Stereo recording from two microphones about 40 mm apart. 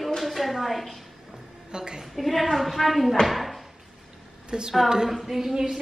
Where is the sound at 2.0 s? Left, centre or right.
Centre.